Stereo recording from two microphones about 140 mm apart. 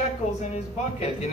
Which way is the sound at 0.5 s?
50° left (ahead or behind).